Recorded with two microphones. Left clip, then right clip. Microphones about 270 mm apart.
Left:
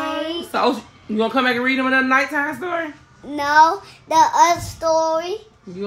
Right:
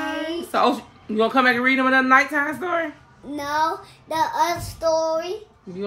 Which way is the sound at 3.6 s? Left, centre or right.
Centre.